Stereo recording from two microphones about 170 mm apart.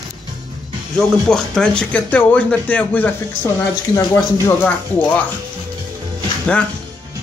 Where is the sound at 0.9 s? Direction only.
5° left (ahead or behind).